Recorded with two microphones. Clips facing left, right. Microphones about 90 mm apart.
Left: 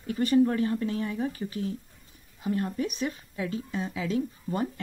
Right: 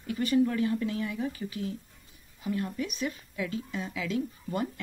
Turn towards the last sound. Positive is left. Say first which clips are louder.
# left 2 dB
turn(degrees=30)  # may be behind; listen again after turning